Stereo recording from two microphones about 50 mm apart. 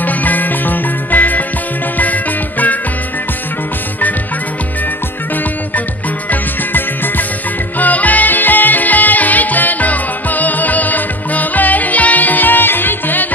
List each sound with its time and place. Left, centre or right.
0.0 s music: left
6.3 s music: left